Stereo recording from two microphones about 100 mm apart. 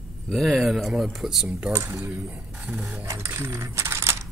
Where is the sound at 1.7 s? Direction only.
25° right (ahead or behind).